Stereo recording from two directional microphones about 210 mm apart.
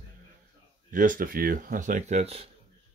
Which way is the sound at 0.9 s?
40° right (ahead or behind).